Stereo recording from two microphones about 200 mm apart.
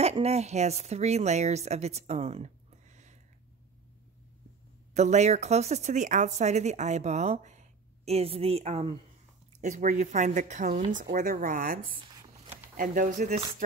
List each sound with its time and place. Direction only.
0.0 s a woman's voice: 30° right (ahead or behind)
4.9 s speech: 35° right (ahead or behind)